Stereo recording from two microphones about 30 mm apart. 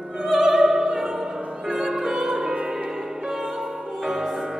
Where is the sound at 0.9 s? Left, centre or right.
Centre.